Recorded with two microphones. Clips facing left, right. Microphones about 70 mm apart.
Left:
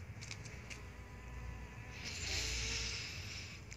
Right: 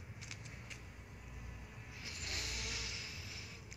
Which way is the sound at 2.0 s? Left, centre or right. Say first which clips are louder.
Even; right.